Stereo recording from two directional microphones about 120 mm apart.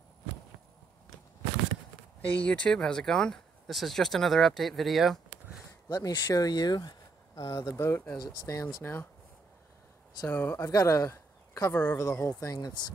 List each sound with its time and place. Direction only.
2.3 s speech: 10° left (ahead or behind)
5.9 s speech: 35° left (ahead or behind)
10.2 s speech: 20° left (ahead or behind)
10.7 s speech: 30° left (ahead or behind)
11.7 s speech: 15° left (ahead or behind)
12.0 s speech: 25° left (ahead or behind)